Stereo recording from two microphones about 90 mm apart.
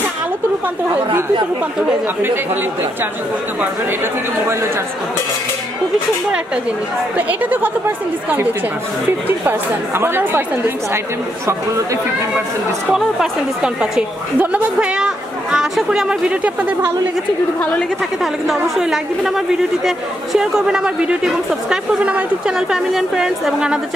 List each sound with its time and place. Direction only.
2.2 s speech: 20° right (ahead or behind)
7.2 s speech: 20° right (ahead or behind)
9.4 s speech: 25° right (ahead or behind)
12.9 s speech: 10° right (ahead or behind)
18.2 s speech: 5° right (ahead or behind)